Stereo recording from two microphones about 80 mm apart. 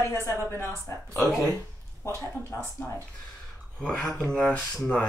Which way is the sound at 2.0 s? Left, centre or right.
Left.